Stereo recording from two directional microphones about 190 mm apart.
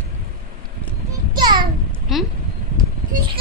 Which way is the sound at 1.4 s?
25° right (ahead or behind).